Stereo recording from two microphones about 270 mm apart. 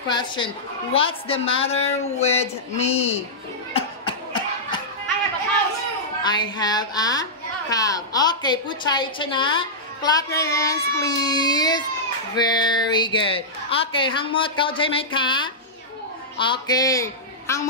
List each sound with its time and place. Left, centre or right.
0.1 s a woman's voice: centre
3.7 s a sound: centre
6.2 s a woman's voice: centre